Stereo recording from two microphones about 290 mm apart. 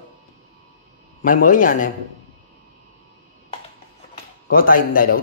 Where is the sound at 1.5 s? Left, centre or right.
Left.